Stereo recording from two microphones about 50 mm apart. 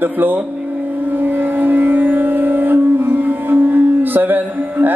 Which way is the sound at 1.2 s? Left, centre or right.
Right.